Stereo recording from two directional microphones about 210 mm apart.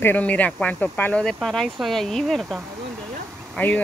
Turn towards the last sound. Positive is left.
turn(degrees=5)  # may be behind; listen again after turning